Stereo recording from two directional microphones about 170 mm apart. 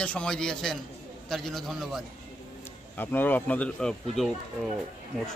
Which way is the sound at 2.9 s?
10° left (ahead or behind).